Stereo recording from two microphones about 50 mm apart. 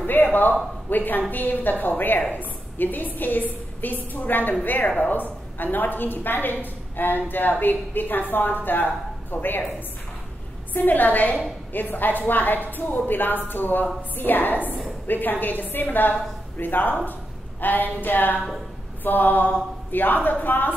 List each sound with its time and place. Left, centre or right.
0.0 s a sound: left
0.8 s a woman's voice: left
10.7 s a woman's voice: left